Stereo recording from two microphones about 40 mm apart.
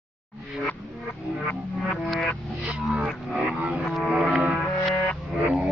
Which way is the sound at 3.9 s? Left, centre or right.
Centre.